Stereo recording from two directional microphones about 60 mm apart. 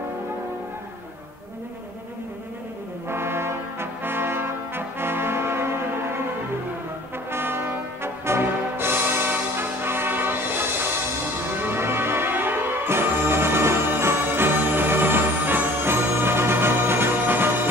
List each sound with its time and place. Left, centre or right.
3.1 s brass instrument: right
7.2 s brass instrument: right
11.5 s music: right